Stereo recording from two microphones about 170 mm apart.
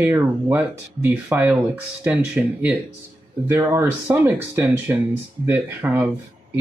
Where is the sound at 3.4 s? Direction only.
15° right (ahead or behind).